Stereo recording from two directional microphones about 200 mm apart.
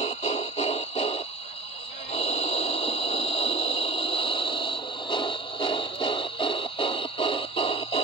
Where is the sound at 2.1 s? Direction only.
30° left (ahead or behind).